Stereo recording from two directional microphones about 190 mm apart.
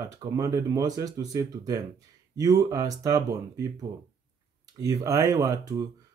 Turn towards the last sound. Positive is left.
turn(degrees=-15)  # may be behind; listen again after turning